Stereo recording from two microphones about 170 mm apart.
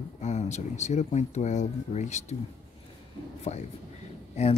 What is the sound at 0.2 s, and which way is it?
Speech, 40° left (ahead or behind).